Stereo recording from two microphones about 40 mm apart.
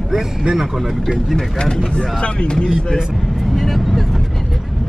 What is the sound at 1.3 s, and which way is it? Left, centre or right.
Speech, centre.